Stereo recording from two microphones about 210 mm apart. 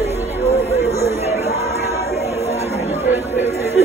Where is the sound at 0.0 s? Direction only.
30° right (ahead or behind).